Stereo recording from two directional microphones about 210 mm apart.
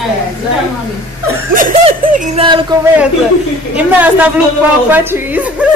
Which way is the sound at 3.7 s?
10° right (ahead or behind).